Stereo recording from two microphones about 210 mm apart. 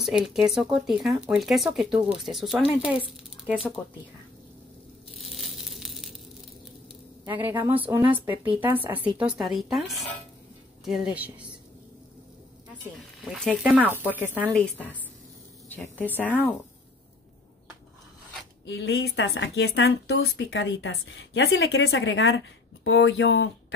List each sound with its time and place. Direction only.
0.0 s speech: centre (ahead or behind)
5.1 s crumpling: centre (ahead or behind)
7.2 s speech: 10° right (ahead or behind)
13.3 s speech: centre (ahead or behind)
14.4 s speech: 5° left (ahead or behind)
16.2 s a woman's voice: 10° left (ahead or behind)
18.7 s a woman's voice: 55° left (ahead or behind)